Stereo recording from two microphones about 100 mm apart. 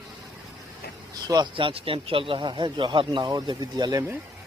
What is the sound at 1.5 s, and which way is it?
Speech, 60° right (ahead or behind).